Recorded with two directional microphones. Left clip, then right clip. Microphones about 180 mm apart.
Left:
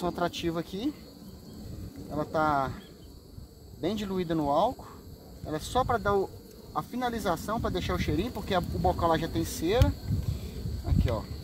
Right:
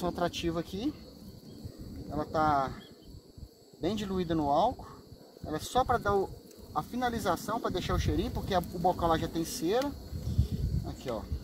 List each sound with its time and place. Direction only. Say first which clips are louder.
0.0 s speech: left 2 dB; 20° left (ahead or behind)
2.0 s speech: left 1 dB; 10° left (ahead or behind)
3.8 s speech: left 2 dB; 15° left (ahead or behind)
10.9 s cricket: left 5 dB; 15° left (ahead or behind)